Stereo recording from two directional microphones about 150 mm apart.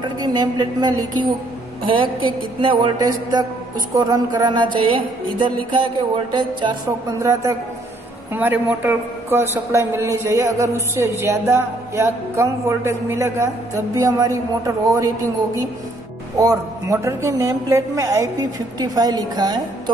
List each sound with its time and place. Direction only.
0.0 s a man's voice: 30° right (ahead or behind)
1.9 s a sound: 35° right (ahead or behind)
7.2 s a man's voice: 20° right (ahead or behind)